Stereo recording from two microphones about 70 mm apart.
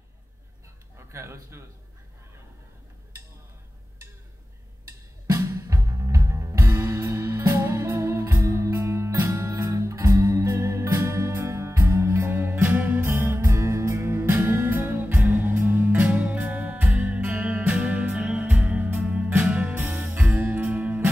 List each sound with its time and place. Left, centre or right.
0.9 s speech: right
5.2 s music: right